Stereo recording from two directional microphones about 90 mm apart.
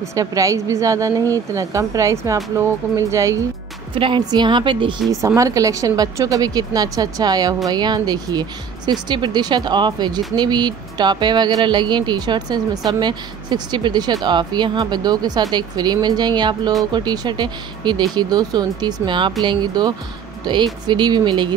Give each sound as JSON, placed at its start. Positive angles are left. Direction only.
{"t": 0.1, "sound": "speech", "side_deg": -40}
{"t": 3.9, "sound": "a woman's voice", "side_deg": -75}
{"t": 4.3, "sound": "speech", "side_deg": -55}
{"t": 5.2, "sound": "speech", "side_deg": -40}